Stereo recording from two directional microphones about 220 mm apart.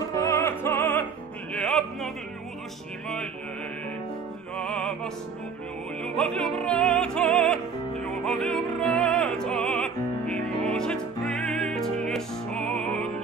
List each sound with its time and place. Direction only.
0.0 s music: 15° left (ahead or behind)
4.6 s music: 5° left (ahead or behind)